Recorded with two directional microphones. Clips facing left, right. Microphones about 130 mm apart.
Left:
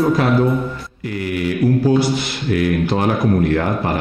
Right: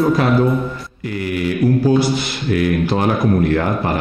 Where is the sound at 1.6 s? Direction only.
20° right (ahead or behind).